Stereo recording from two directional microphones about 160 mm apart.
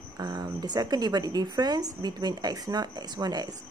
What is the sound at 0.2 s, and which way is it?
A woman's voice, 25° right (ahead or behind).